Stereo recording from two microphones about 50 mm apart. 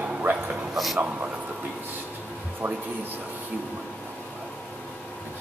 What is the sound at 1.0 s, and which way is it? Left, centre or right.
Speech, right.